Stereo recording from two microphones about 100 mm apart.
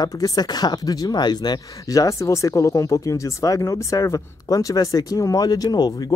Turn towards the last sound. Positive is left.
turn(degrees=40)  # may be behind; listen again after turning